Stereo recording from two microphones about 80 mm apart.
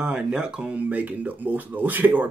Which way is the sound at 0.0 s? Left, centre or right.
Centre.